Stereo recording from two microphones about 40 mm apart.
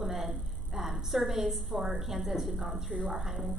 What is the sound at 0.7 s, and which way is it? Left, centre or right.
A woman's voice, centre.